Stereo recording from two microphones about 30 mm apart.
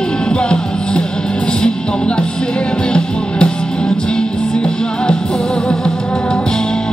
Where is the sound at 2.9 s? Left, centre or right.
Left.